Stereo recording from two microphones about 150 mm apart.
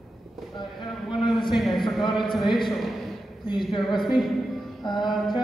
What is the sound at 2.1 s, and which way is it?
Speech, centre (ahead or behind).